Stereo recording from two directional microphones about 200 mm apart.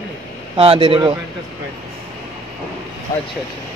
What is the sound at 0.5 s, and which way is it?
Speech, 30° right (ahead or behind).